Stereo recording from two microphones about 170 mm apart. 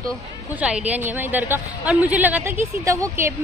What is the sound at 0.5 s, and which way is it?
A woman's voice, 10° right (ahead or behind).